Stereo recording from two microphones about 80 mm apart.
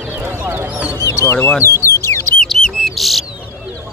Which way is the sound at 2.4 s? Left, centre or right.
Centre.